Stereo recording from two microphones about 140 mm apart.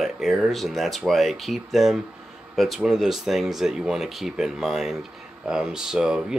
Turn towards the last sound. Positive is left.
turn(degrees=-5)  # may be behind; listen again after turning